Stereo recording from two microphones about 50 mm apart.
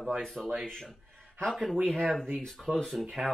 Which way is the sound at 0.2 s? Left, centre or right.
Centre.